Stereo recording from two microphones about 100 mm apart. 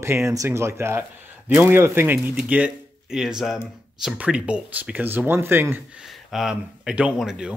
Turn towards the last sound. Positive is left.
turn(degrees=-5)  # may be behind; listen again after turning